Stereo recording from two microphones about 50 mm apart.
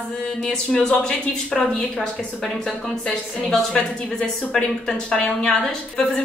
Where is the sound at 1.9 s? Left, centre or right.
Centre.